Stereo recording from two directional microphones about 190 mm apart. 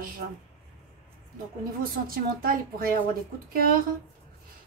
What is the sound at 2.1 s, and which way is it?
A woman's voice, 50° right (ahead or behind).